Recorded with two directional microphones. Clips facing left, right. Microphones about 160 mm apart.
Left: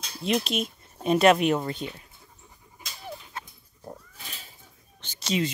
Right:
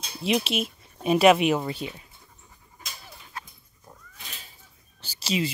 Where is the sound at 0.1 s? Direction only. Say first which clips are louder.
Right 1 dB; 5° right (ahead or behind).